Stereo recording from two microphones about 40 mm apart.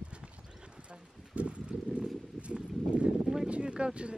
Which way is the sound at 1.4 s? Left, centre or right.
Right.